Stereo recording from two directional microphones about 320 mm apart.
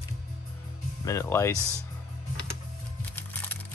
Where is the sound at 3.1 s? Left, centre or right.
Centre.